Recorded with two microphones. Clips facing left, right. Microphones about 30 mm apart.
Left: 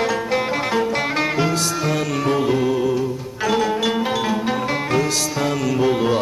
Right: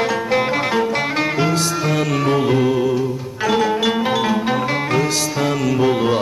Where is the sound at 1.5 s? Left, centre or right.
Right.